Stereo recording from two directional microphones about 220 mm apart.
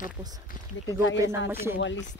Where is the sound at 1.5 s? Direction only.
10° right (ahead or behind).